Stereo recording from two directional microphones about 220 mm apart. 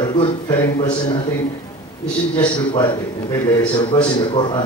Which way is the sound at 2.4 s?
20° left (ahead or behind).